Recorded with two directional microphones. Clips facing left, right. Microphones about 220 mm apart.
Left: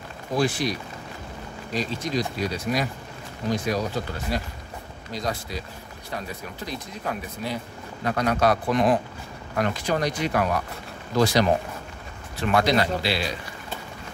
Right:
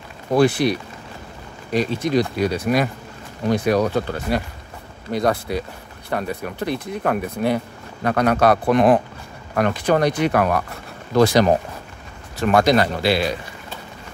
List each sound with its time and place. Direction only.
0.3 s speech: 60° right (ahead or behind)